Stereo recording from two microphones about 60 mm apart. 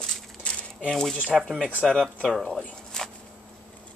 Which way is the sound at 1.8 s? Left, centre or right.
Centre.